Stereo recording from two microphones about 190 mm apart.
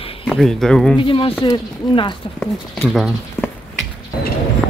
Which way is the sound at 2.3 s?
5° left (ahead or behind).